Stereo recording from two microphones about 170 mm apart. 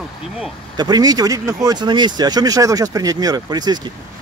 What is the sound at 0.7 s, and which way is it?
Speech, 25° right (ahead or behind).